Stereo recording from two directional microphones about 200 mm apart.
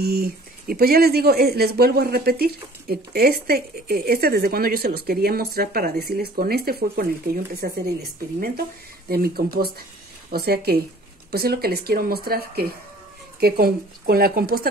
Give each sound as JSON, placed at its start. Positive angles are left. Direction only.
{"t": 0.0, "sound": "speech", "side_deg": -50}